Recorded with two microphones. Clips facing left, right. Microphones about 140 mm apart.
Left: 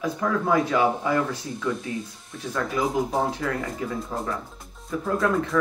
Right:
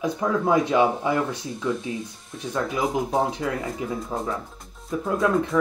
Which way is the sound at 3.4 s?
15° right (ahead or behind).